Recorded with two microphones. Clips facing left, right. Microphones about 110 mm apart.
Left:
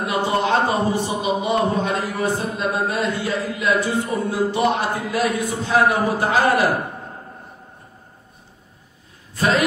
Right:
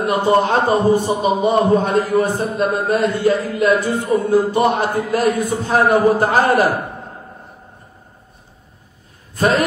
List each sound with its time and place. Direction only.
0.0 s a man's voice: 45° right (ahead or behind)
9.3 s a man's voice: 45° right (ahead or behind)